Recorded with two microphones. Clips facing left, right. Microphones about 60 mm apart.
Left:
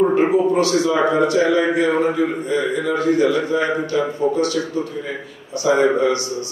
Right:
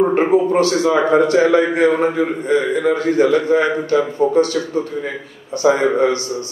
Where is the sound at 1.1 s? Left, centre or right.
Right.